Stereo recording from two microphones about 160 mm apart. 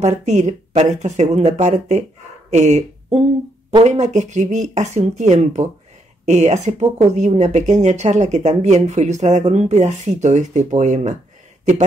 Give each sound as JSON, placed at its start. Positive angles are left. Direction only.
{"t": 0.0, "sound": "speech", "side_deg": -45}